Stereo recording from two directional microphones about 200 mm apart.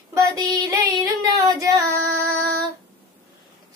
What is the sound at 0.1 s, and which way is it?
Child singing, 15° right (ahead or behind).